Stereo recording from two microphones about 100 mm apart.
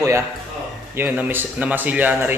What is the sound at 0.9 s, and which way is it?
A man's voice, 20° right (ahead or behind).